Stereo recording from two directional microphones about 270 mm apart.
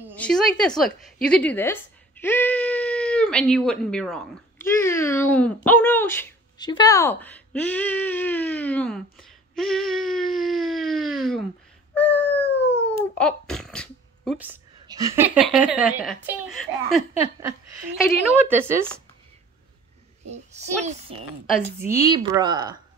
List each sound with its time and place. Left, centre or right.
0.1 s a woman's voice: centre
9.6 s a sound: centre
12.9 s a child's voice: centre
20.2 s a child's voice: right
21.7 s speech: centre